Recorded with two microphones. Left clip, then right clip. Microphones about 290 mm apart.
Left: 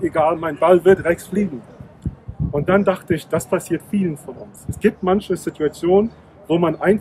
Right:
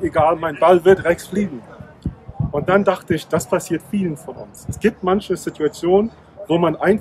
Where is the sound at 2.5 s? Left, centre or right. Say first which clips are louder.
Right 1 dB; centre.